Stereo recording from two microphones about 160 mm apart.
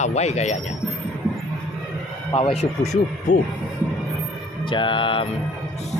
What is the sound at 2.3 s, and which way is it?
Speech, 35° left (ahead or behind).